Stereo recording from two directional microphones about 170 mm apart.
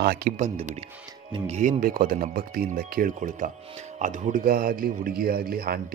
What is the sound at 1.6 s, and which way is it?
A man's voice, 50° right (ahead or behind).